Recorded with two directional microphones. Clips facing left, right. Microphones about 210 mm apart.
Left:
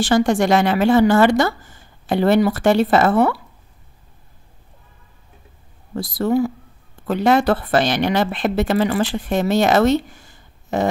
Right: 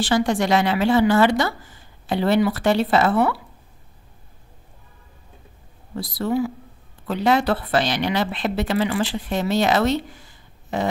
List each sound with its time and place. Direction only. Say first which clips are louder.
0.0 s a woman's voice: left 4 dB; 45° left (ahead or behind)
5.9 s a woman's voice: left 4 dB; 45° left (ahead or behind)